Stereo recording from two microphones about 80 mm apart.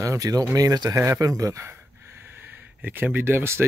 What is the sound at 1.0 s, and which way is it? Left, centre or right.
Speech, right.